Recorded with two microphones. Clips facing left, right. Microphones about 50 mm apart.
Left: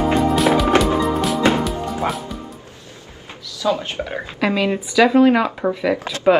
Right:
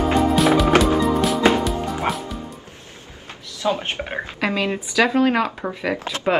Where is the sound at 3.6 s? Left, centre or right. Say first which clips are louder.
Left 2 dB; right.